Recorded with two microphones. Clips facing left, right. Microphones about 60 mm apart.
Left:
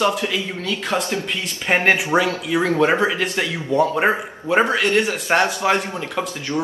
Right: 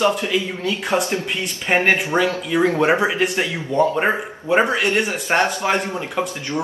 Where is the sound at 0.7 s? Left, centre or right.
Right.